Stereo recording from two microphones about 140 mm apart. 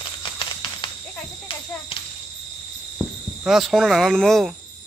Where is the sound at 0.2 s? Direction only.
35° left (ahead or behind).